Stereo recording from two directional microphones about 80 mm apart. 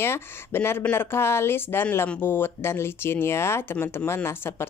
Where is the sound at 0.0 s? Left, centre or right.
Left.